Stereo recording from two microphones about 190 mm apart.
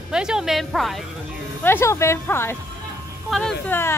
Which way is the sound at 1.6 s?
10° left (ahead or behind).